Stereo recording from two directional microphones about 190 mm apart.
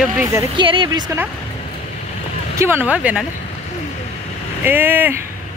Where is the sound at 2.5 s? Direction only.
15° right (ahead or behind).